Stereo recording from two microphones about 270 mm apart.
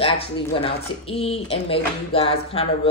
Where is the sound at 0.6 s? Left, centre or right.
Left.